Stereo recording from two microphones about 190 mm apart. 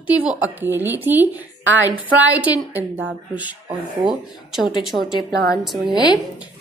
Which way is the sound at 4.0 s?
Centre (ahead or behind).